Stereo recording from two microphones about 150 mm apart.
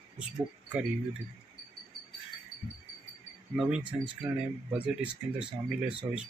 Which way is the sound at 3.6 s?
5° right (ahead or behind).